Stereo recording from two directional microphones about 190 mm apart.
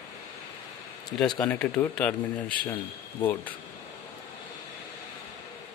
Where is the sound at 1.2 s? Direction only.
5° left (ahead or behind).